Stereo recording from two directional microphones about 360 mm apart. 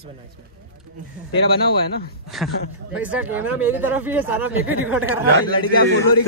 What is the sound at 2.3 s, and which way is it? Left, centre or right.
Speech, centre.